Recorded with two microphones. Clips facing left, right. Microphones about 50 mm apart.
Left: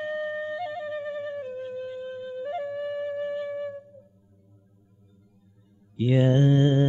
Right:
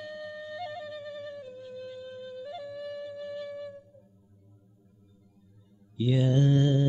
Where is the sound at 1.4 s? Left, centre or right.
Left.